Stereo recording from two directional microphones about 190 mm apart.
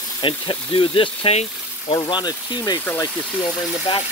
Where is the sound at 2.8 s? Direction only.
10° left (ahead or behind).